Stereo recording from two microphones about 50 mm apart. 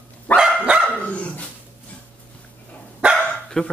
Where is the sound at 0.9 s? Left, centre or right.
Left.